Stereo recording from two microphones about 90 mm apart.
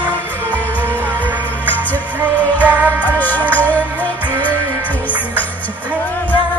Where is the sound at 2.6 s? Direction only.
20° right (ahead or behind).